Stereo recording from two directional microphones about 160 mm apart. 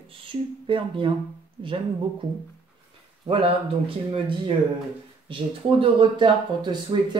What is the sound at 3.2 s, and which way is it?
Speech, 35° right (ahead or behind).